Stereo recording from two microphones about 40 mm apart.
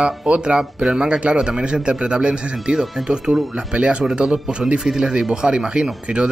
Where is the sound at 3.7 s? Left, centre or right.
Right.